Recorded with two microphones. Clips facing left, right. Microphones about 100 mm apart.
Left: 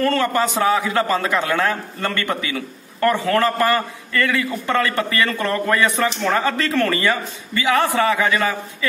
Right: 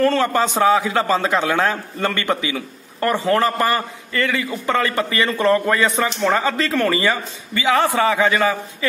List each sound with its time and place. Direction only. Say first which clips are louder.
0.0 s a man's voice: right 2 dB; 20° right (ahead or behind)